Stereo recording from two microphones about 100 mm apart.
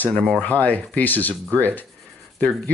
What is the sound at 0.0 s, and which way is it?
Speech, 10° left (ahead or behind).